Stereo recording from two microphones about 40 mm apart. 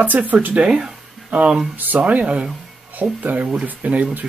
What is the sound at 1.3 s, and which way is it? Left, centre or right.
Speech, right.